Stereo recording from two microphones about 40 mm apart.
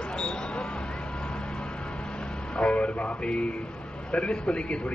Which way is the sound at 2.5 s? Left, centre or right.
Left.